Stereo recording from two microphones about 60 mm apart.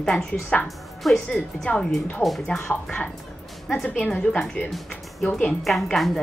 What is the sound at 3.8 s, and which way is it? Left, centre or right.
Speech, left.